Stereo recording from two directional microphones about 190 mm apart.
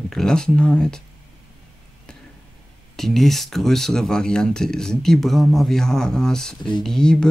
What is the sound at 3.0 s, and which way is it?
Speech, centre (ahead or behind).